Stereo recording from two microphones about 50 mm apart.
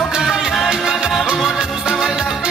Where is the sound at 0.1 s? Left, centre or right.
Centre.